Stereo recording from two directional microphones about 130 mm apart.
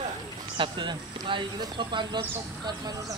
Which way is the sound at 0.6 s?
40° right (ahead or behind).